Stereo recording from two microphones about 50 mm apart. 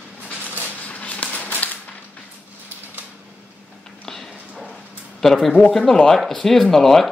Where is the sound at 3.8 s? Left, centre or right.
Centre.